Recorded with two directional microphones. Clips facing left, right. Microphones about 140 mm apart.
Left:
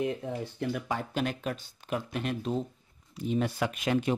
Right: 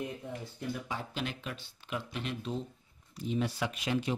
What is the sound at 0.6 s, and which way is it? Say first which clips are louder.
Speech: left 5 dB; 65° left (ahead or behind).